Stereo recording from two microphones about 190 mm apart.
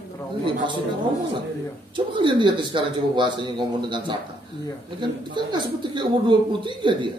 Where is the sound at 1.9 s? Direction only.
25° right (ahead or behind).